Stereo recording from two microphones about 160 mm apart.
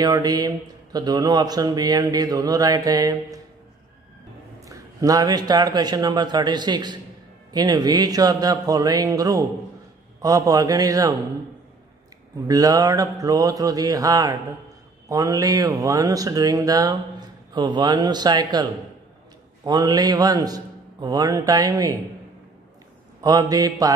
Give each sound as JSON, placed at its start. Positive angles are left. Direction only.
{"t": 0.0, "sound": "speech", "side_deg": -25}
{"t": 4.6, "sound": "speech", "side_deg": -20}
{"t": 12.4, "sound": "speech", "side_deg": -25}
{"t": 23.2, "sound": "speech", "side_deg": -25}